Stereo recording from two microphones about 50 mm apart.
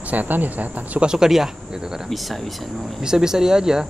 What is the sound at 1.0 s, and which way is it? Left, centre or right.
Speech, centre.